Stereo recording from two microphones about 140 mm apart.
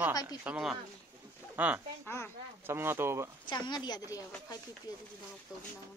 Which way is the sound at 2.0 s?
15° left (ahead or behind).